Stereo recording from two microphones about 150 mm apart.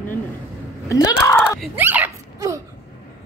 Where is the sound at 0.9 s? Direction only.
20° left (ahead or behind).